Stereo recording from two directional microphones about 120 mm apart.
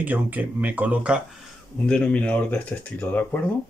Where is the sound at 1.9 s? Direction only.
10° left (ahead or behind).